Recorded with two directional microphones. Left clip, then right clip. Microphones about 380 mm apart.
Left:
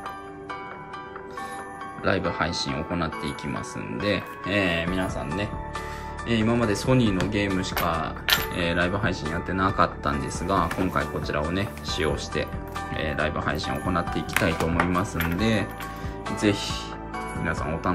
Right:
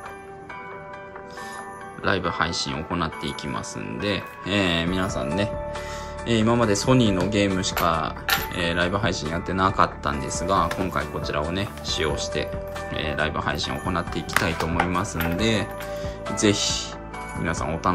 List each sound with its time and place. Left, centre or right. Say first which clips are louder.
2.0 s speech: right 2 dB; centre